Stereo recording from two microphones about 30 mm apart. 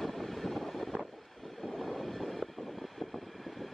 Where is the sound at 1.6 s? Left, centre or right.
Centre.